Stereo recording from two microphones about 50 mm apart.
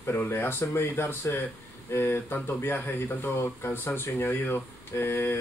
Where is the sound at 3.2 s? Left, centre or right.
Left.